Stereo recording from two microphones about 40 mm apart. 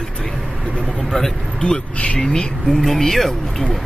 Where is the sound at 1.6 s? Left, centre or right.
Left.